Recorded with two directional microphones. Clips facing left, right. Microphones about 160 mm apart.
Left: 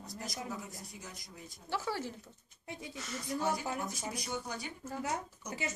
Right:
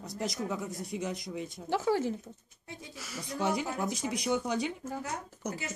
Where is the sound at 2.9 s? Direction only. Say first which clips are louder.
Right 1 dB; 5° right (ahead or behind).